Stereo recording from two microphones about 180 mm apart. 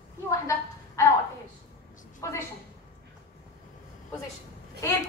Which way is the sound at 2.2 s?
15° left (ahead or behind).